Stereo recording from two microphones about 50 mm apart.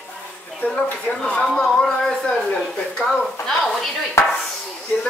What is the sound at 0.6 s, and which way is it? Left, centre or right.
Speech, left.